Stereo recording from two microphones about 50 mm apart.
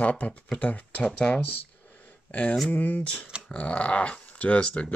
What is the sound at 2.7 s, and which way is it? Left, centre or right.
Speech, left.